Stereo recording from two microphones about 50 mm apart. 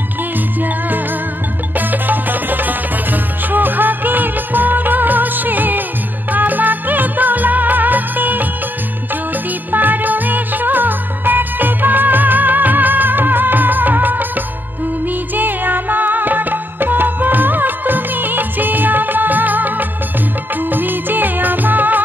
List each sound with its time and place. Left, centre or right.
0.6 s music: right
9.7 s music: right